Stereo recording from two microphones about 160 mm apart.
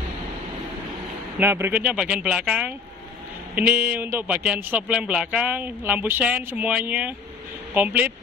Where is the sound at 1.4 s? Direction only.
15° right (ahead or behind).